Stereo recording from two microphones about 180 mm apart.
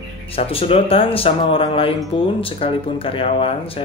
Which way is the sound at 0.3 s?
30° left (ahead or behind).